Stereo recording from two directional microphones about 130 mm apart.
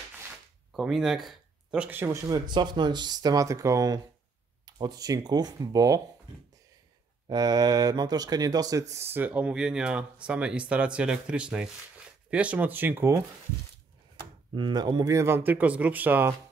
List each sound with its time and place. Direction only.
0.7 s speech: 5° right (ahead or behind)
2.3 s speech: 35° right (ahead or behind)
7.2 s speech: 30° right (ahead or behind)
8.9 s speech: 20° right (ahead or behind)
14.5 s speech: 35° right (ahead or behind); by 16.3 s 15° right (ahead or behind)